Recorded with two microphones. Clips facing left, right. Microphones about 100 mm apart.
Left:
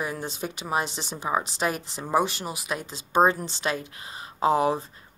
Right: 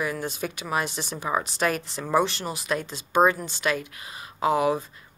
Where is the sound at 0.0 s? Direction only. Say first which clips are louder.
Right 2 dB; 25° left (ahead or behind).